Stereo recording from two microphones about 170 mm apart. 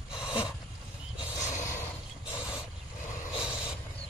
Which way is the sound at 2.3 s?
5° right (ahead or behind).